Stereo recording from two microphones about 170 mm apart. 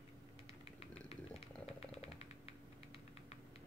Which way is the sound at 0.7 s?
35° left (ahead or behind).